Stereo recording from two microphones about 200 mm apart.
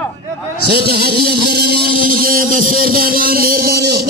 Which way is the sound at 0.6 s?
55° right (ahead or behind).